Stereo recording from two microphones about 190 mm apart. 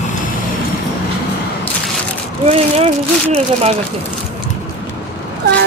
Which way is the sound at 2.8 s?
30° right (ahead or behind).